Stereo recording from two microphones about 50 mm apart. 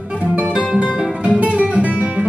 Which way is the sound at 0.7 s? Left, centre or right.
Right.